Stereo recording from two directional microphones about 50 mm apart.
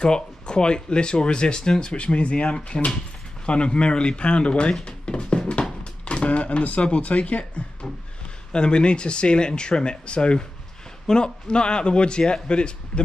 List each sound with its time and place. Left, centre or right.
0.0 s a man's voice: centre
4.8 s a sound: left
7.2 s a man's voice: left